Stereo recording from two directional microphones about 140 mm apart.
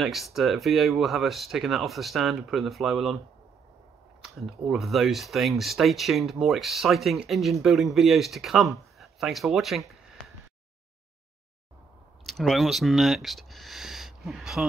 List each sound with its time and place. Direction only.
0.0 s speech: centre (ahead or behind)
4.2 s speech: centre (ahead or behind)
12.3 s speech: centre (ahead or behind)